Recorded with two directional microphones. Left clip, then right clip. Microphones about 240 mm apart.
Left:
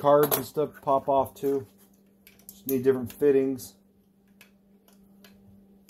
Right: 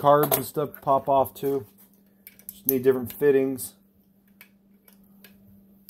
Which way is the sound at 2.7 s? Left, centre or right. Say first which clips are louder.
Right 2 dB; right.